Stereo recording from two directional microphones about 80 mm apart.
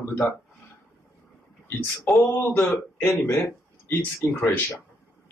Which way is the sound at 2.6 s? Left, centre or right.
Centre.